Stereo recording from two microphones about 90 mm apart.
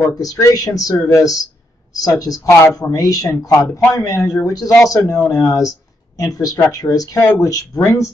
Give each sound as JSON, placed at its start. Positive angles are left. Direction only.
{"t": 0.2, "sound": "speech", "side_deg": 40}